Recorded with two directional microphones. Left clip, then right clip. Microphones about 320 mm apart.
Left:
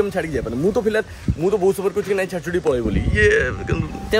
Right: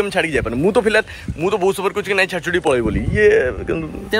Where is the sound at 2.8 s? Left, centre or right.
Centre.